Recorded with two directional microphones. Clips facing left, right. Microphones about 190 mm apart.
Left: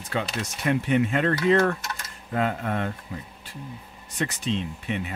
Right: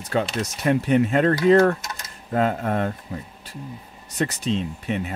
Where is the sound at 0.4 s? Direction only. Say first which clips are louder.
Right 4 dB; 40° right (ahead or behind).